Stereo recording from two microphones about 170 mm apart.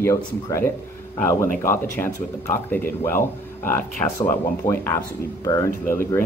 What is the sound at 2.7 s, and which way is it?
Speech, 15° left (ahead or behind).